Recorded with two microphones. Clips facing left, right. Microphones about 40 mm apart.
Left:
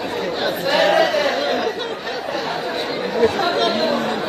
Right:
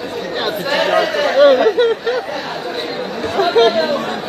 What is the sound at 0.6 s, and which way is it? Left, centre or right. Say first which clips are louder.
Chatter: left 1 dB; centre.